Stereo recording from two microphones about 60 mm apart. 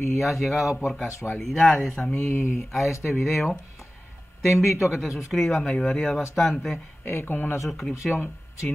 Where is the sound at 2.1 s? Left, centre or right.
Left.